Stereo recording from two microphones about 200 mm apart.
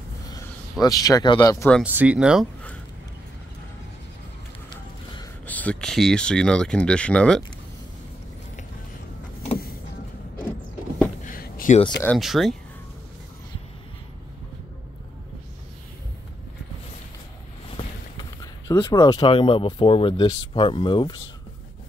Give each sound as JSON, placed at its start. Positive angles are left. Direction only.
{"t": 0.3, "sound": "speech", "side_deg": 20}
{"t": 1.7, "sound": "speech", "side_deg": -5}
{"t": 4.6, "sound": "music", "side_deg": 25}
{"t": 5.5, "sound": "speech", "side_deg": 5}
{"t": 11.2, "sound": "a sound", "side_deg": 45}
{"t": 12.2, "sound": "speech", "side_deg": 0}
{"t": 17.7, "sound": "speech", "side_deg": 20}